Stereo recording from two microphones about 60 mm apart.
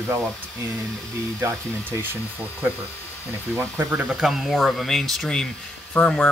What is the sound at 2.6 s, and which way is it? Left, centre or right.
Speech, right.